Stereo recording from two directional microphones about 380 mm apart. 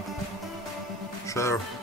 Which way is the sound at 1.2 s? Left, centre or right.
Centre.